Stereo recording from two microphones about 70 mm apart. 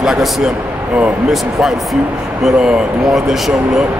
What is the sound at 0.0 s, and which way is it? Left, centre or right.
Speech, centre.